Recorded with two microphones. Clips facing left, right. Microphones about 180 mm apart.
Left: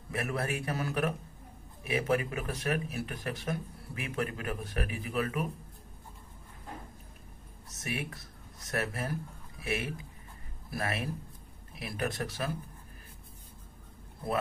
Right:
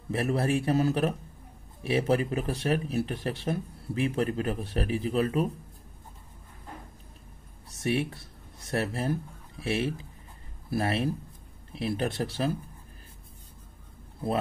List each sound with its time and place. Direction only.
0.1 s a man's voice: 30° right (ahead or behind)
7.8 s a man's voice: 30° right (ahead or behind)
14.2 s speech: 10° right (ahead or behind)